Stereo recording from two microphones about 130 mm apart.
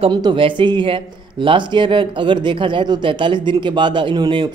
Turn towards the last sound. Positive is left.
turn(degrees=-35)  # may be behind; listen again after turning